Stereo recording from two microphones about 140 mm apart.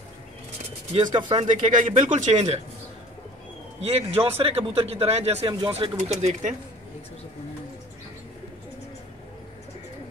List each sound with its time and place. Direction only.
0.9 s speech: 35° right (ahead or behind)
1.6 s speech: 65° right (ahead or behind)
3.8 s speech: 45° right (ahead or behind)